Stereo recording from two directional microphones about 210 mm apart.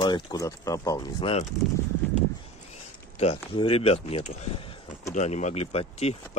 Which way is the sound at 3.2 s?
25° left (ahead or behind).